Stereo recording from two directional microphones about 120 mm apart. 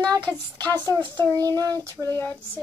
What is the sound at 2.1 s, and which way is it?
Speech, 15° left (ahead or behind).